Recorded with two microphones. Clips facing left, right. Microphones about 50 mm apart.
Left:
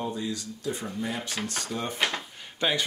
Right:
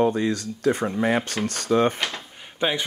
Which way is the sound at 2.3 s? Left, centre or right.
Centre.